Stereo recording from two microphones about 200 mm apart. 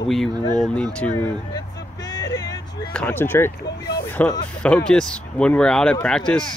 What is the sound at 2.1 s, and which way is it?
Vehicle, 20° left (ahead or behind).